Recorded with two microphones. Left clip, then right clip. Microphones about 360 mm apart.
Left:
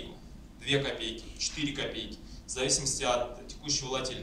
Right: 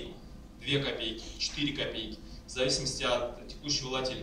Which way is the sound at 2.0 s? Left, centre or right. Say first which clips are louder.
Left 1 dB; centre.